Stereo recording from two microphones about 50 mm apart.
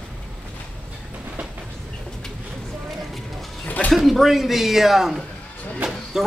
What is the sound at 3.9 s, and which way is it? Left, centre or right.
Speech, centre.